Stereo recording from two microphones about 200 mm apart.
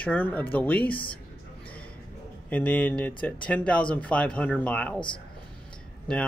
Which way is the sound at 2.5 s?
10° left (ahead or behind).